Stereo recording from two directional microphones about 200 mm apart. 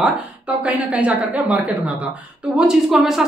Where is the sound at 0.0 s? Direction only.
5° right (ahead or behind).